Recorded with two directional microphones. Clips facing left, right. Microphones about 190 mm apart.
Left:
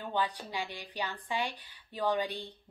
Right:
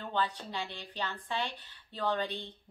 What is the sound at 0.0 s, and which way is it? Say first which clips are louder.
A woman's voice: left 1 dB; 10° left (ahead or behind).